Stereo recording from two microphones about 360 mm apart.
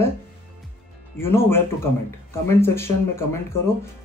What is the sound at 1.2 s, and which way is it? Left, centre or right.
Speech, centre.